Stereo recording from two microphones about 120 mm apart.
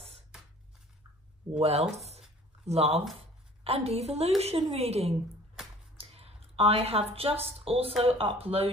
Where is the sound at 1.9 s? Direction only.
65° right (ahead or behind).